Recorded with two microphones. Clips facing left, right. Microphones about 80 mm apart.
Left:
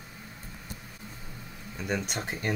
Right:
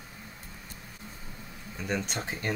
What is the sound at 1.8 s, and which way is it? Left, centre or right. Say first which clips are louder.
Speech: even; centre.